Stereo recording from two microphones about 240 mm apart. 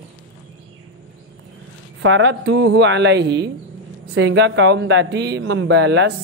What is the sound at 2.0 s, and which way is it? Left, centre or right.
Speech, right.